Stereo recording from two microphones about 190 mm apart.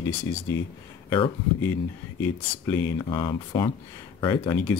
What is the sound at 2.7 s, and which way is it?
Speech, 15° left (ahead or behind).